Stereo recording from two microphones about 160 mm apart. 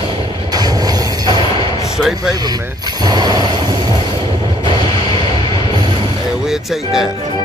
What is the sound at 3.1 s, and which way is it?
Vehicle, 25° right (ahead or behind).